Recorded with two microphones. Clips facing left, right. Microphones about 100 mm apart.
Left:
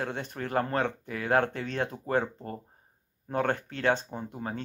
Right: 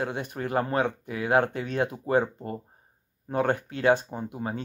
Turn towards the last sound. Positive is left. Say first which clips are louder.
# right 3 dB
turn(degrees=-10)  # may be behind; listen again after turning